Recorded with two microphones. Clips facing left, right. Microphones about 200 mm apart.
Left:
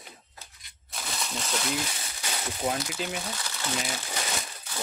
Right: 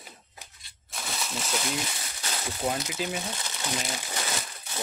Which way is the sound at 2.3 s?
Centre (ahead or behind).